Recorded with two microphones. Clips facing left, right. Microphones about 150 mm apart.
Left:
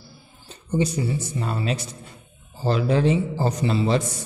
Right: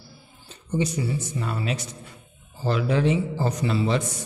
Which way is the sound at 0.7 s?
30° left (ahead or behind).